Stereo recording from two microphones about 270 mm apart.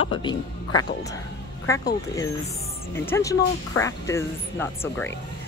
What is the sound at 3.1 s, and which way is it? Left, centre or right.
Speech, centre.